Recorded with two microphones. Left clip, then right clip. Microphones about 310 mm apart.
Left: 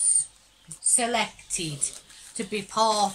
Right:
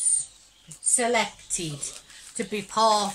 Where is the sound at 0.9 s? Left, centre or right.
Centre.